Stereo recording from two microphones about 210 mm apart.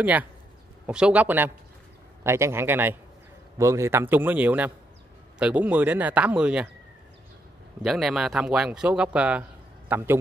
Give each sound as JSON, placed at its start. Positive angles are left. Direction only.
{"t": 0.0, "sound": "speech", "side_deg": -10}
{"t": 7.8, "sound": "speech", "side_deg": 0}